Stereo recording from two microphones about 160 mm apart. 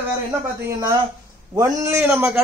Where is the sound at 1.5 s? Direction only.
20° right (ahead or behind).